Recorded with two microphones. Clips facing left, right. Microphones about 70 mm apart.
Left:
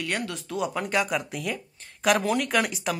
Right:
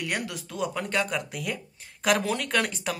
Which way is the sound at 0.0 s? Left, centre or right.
Centre.